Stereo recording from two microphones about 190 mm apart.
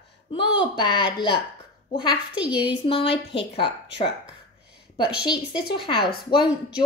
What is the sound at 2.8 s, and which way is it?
A woman's voice, 30° left (ahead or behind).